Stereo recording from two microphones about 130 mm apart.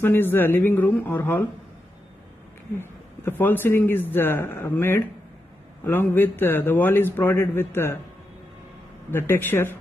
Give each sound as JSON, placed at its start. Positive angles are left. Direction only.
{"t": 0.0, "sound": "a man's voice", "side_deg": 15}
{"t": 2.8, "sound": "a man's voice", "side_deg": 15}
{"t": 9.1, "sound": "a man's voice", "side_deg": 15}